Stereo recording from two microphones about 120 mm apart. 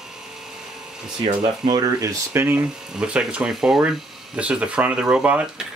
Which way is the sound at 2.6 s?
5° right (ahead or behind).